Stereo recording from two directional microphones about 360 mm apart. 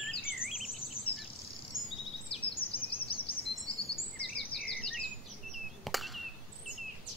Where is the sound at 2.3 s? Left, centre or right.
Centre.